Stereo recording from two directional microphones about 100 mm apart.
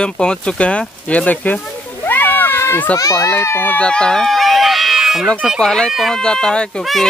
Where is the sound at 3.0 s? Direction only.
30° left (ahead or behind).